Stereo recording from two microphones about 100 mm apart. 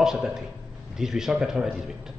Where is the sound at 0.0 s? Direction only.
5° right (ahead or behind).